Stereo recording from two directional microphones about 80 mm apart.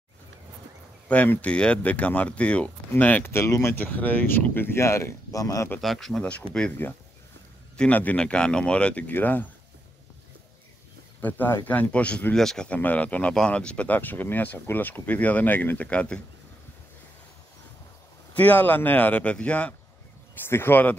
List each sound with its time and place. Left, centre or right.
1.0 s speech: centre
3.3 s speech: left
3.7 s speech: left
5.8 s speech: centre
6.8 s speech: left
11.1 s speech: left
12.4 s speech: centre
12.6 s speech: centre
18.3 s speech: left
20.3 s speech: left